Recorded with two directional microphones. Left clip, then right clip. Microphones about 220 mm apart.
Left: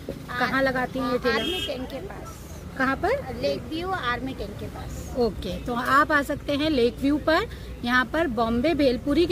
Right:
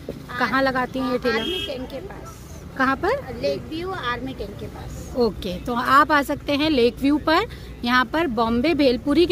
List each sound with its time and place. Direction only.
0.4 s a woman's voice: 50° right (ahead or behind)
1.0 s a woman's voice: 10° left (ahead or behind)
2.8 s a woman's voice: 50° right (ahead or behind)
3.3 s a woman's voice: 10° left (ahead or behind)
5.2 s a woman's voice: 50° right (ahead or behind)